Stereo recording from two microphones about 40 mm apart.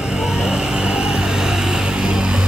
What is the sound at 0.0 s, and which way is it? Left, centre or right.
Vehicle, centre.